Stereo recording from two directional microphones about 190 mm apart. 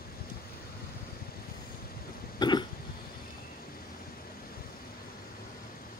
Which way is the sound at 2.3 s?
20° left (ahead or behind).